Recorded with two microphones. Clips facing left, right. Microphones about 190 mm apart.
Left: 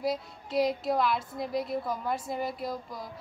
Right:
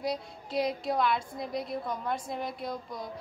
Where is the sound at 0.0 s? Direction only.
Centre (ahead or behind).